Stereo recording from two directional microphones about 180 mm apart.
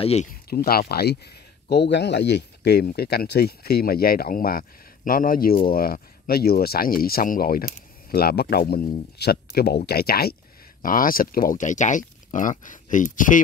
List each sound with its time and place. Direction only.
0.0 s speech: 35° left (ahead or behind)
0.5 s speech: 55° left (ahead or behind)